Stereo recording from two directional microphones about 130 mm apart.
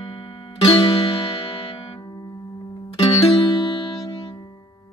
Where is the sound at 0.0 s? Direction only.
40° left (ahead or behind).